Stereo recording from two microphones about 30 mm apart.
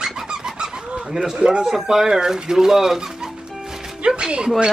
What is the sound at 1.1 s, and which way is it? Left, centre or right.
Speech, centre.